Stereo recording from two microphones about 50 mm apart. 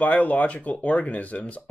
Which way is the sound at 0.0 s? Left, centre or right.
Left.